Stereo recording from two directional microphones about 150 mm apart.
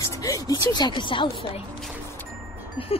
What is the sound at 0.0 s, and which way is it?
A woman's voice, 25° left (ahead or behind).